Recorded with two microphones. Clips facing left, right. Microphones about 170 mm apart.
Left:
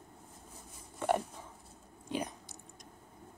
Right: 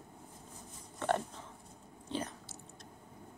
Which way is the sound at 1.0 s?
10° left (ahead or behind).